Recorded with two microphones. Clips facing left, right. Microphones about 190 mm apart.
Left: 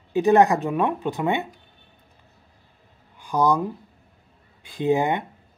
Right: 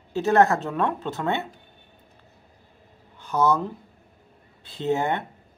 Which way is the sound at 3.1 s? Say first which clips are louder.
Left 1 dB; 15° left (ahead or behind).